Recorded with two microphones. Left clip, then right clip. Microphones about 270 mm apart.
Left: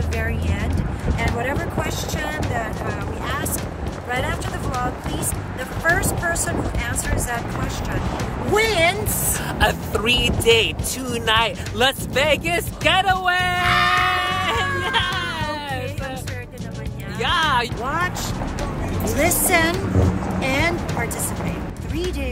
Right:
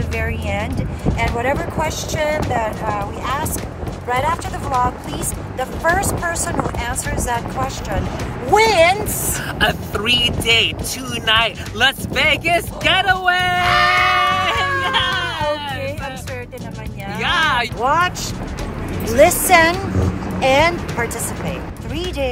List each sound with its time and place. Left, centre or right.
0.2 s vehicle: centre
1.1 s a sound: centre
4.1 s speech: centre
5.9 s speech: centre
9.6 s speech: centre
13.6 s music: centre
14.3 s goat: centre
14.8 s music: centre
17.2 s speech: centre
17.8 s speech: centre
19.1 s speech: centre